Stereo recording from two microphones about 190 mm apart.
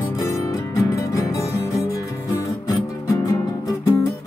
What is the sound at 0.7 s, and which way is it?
Music, 15° left (ahead or behind).